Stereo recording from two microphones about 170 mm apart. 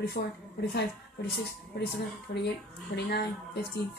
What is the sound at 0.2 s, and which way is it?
Speech, 50° left (ahead or behind).